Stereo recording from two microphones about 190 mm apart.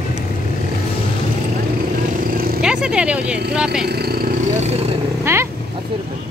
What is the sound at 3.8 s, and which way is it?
Speech, 55° right (ahead or behind).